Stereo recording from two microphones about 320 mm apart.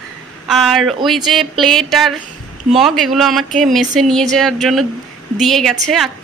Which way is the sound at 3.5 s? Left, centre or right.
Right.